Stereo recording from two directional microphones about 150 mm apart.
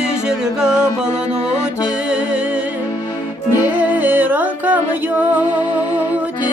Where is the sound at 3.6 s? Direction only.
10° right (ahead or behind).